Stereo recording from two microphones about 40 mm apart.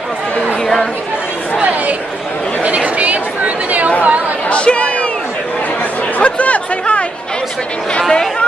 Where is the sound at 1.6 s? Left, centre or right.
Right.